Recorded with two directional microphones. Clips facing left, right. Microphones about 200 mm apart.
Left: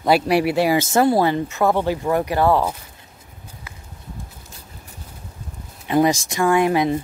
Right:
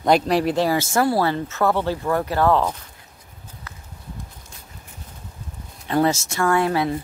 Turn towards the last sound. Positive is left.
turn(degrees=15)  # may be behind; listen again after turning